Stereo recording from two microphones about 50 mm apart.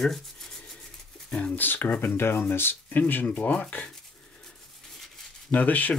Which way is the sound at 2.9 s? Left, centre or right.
Left.